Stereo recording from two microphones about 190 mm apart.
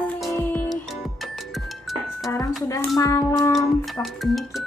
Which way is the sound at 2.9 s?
20° left (ahead or behind).